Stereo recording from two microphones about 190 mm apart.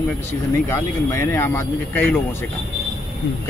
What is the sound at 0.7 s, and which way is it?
Speech, 15° left (ahead or behind).